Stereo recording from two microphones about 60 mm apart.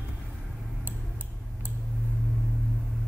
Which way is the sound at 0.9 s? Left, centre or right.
Right.